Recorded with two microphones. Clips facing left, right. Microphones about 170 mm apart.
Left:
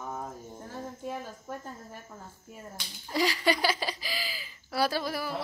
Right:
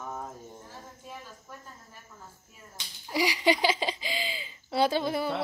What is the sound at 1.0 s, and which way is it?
Cricket, 60° left (ahead or behind).